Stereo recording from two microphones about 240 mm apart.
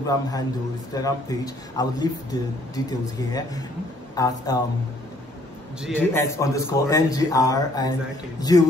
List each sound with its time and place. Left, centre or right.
0.0 s a man's voice: centre
5.9 s a man's voice: centre